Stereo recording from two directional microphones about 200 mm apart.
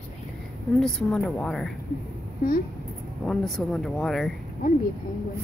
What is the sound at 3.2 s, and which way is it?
Speech, centre (ahead or behind).